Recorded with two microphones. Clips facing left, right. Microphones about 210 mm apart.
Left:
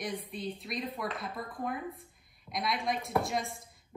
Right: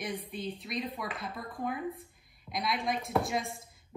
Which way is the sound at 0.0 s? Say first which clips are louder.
Even; centre (ahead or behind).